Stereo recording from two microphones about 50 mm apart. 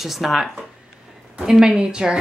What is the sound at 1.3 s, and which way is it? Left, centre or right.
Speech, centre.